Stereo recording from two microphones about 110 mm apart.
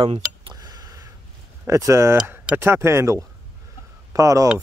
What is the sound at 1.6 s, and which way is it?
Speech, 25° right (ahead or behind).